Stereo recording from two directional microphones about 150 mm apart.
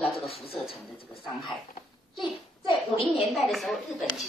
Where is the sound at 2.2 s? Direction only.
35° left (ahead or behind).